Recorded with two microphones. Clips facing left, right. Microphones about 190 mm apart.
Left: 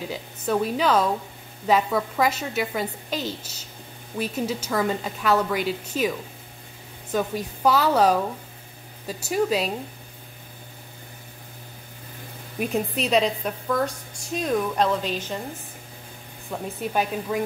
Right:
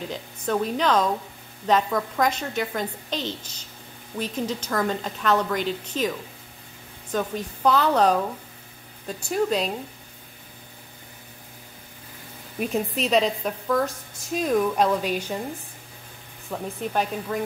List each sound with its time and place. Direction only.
0.1 s a woman's voice: 5° left (ahead or behind)
12.5 s a woman's voice: centre (ahead or behind)
16.4 s a woman's voice: 5° left (ahead or behind)